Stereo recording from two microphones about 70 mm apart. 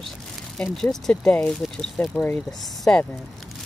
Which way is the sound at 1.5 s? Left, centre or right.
Centre.